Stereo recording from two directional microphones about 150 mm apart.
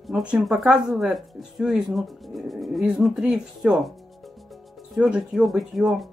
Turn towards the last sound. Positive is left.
turn(degrees=0)  # may be behind; listen again after turning